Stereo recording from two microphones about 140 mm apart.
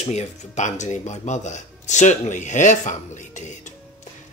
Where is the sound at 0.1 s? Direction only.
55° left (ahead or behind).